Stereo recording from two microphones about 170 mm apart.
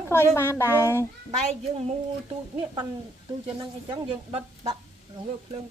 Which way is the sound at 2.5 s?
20° right (ahead or behind).